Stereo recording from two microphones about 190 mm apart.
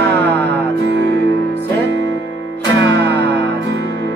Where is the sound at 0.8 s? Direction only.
65° right (ahead or behind).